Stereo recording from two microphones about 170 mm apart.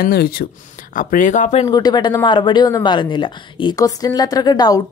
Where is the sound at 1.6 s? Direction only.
25° left (ahead or behind).